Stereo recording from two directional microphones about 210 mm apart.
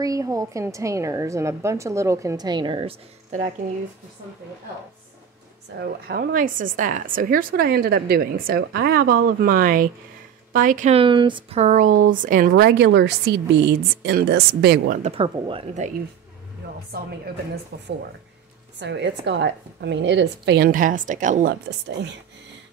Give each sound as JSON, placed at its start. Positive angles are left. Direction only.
{"t": 0.0, "sound": "a woman's voice", "side_deg": -15}
{"t": 5.8, "sound": "speech", "side_deg": -45}
{"t": 15.0, "sound": "speech", "side_deg": -30}
{"t": 18.8, "sound": "a woman's voice", "side_deg": -55}
{"t": 21.6, "sound": "a woman's voice", "side_deg": -55}